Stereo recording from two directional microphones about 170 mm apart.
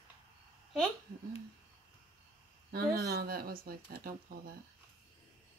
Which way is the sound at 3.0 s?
65° right (ahead or behind).